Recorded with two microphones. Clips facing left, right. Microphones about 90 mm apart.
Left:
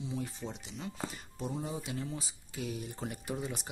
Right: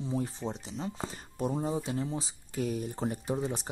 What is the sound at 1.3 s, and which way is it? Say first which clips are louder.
Speech: right 8 dB; 50° right (ahead or behind).